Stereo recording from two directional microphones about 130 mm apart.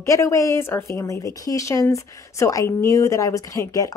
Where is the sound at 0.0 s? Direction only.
25° left (ahead or behind).